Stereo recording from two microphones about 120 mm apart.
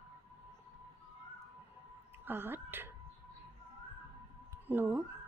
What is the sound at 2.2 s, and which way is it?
Speech, 15° right (ahead or behind).